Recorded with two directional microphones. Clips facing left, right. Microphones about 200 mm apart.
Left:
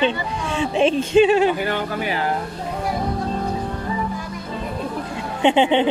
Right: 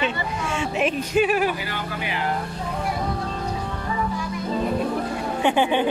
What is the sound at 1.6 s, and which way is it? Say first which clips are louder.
Speech: left 7 dB; 50° left (ahead or behind).